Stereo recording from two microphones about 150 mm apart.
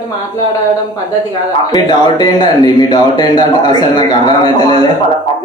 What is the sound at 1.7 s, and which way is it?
Speech, 30° left (ahead or behind).